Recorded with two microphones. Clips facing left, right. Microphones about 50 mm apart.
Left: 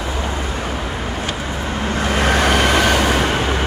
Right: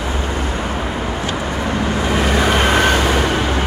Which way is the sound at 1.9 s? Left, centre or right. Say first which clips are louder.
Left 2 dB; left.